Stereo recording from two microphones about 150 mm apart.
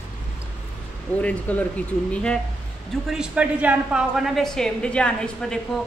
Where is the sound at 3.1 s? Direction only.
5° right (ahead or behind).